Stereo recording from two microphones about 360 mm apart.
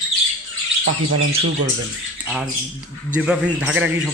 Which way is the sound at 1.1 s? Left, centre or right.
Right.